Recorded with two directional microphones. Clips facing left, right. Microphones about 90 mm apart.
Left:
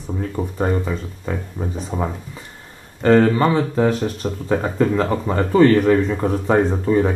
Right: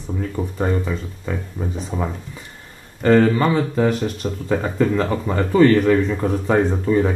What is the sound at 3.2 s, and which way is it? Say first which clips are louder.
Speech: left 1 dB; 40° left (ahead or behind).